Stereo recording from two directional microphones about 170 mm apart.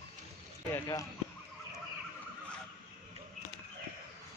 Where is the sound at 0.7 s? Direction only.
20° left (ahead or behind).